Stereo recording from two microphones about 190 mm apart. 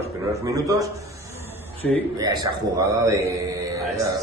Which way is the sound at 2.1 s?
20° right (ahead or behind).